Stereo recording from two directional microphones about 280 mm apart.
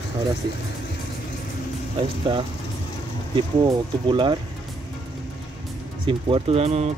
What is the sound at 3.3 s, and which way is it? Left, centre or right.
Speech, centre.